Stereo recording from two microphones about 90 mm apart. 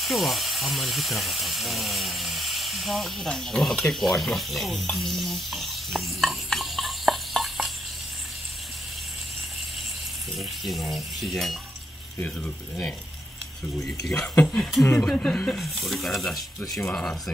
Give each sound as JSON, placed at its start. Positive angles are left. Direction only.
{"t": 0.0, "sound": "speech", "side_deg": 0}
{"t": 10.3, "sound": "speech", "side_deg": 0}
{"t": 12.2, "sound": "speech", "side_deg": 15}
{"t": 14.3, "sound": "speech", "side_deg": 20}
{"t": 15.1, "sound": "speech", "side_deg": 10}